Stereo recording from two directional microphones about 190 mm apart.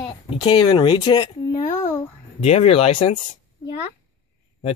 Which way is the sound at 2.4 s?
35° left (ahead or behind).